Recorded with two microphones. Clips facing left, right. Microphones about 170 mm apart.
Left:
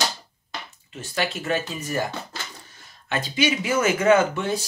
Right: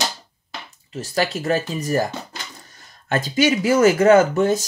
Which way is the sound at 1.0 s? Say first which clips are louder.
Right 5 dB; 40° right (ahead or behind).